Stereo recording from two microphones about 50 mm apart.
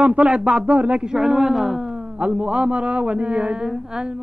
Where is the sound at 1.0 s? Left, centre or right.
Centre.